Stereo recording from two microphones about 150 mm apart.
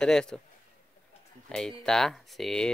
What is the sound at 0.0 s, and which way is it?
Speech, 5° left (ahead or behind).